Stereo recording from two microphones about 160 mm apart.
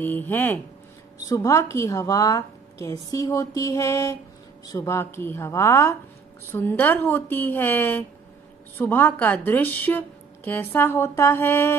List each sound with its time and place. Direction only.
0.0 s a woman's voice: 10° left (ahead or behind)